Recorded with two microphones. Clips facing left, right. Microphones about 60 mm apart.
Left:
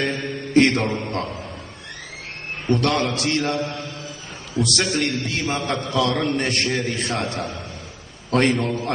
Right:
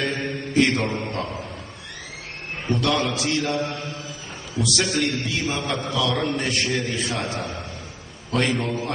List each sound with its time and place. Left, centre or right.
0.5 s mantra: left
1.2 s speech: centre
2.7 s a man's voice: left
8.6 s a man's voice: left